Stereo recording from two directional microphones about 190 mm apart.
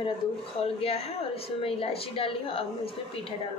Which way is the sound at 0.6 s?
30° left (ahead or behind).